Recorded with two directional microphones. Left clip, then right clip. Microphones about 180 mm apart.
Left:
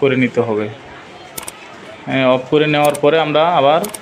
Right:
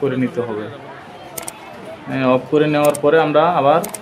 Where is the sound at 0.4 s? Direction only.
20° left (ahead or behind).